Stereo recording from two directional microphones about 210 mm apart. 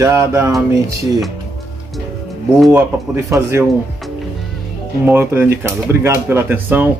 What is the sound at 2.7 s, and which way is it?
Speech, 10° right (ahead or behind).